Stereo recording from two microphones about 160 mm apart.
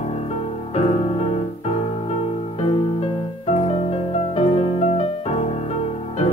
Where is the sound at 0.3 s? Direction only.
40° left (ahead or behind).